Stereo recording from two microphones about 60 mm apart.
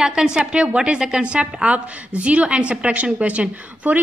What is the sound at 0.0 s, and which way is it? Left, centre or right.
A woman's voice, centre.